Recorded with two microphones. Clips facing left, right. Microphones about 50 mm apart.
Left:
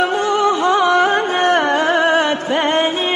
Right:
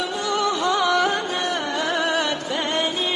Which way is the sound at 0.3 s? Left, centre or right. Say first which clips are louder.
Left 4 dB; left.